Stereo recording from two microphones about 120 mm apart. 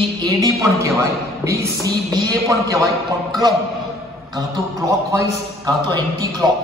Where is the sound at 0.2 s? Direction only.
30° right (ahead or behind).